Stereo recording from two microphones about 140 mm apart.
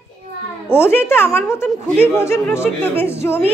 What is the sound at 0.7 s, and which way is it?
A woman's voice, 15° left (ahead or behind).